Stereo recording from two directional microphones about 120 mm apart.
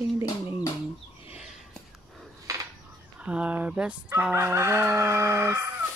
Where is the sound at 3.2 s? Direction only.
10° right (ahead or behind).